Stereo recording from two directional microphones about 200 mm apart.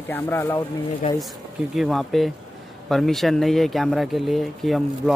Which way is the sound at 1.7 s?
Centre (ahead or behind).